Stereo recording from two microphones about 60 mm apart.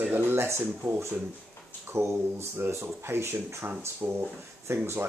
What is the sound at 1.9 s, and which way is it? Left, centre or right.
Speech, right.